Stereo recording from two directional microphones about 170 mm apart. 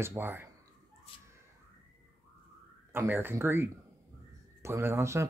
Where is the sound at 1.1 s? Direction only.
35° left (ahead or behind).